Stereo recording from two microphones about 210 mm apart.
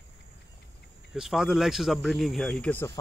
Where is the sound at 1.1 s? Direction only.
Centre (ahead or behind).